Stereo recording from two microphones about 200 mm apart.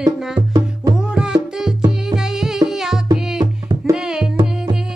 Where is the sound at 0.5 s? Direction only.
15° right (ahead or behind).